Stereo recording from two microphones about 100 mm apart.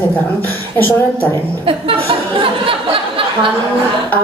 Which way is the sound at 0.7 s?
20° left (ahead or behind).